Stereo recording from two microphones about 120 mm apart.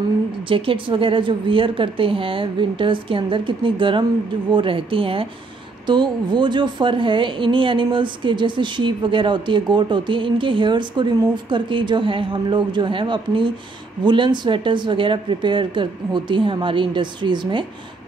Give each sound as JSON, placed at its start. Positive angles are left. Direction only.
{"t": 0.5, "sound": "a woman's voice", "side_deg": -45}